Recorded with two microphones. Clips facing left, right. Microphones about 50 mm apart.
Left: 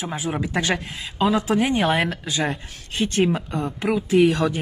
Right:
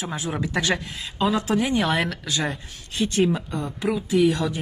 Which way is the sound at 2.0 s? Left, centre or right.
Centre.